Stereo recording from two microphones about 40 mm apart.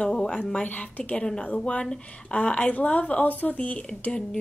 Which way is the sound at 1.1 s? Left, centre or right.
Left.